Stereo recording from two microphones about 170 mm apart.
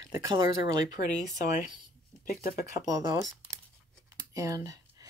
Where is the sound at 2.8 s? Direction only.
20° right (ahead or behind).